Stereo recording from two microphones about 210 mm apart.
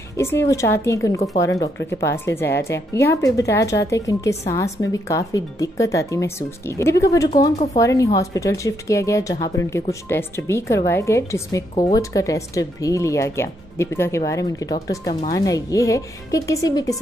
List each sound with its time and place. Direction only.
0.2 s speech: 10° left (ahead or behind)